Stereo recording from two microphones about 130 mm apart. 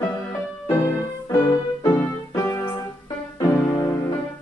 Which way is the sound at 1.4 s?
15° left (ahead or behind).